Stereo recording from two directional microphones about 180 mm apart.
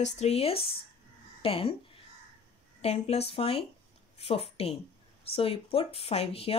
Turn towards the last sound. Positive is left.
turn(degrees=35)  # may be behind; listen again after turning